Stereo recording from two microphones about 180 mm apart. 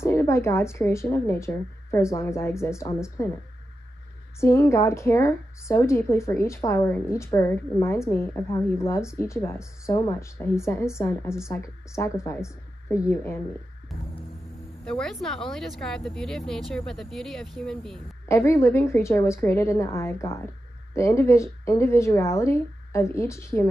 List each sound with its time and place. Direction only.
0.0 s speech: 15° left (ahead or behind)
4.4 s speech: 15° left (ahead or behind)
13.9 s music: centre (ahead or behind)
14.9 s speech: centre (ahead or behind)
18.3 s speech: 15° left (ahead or behind)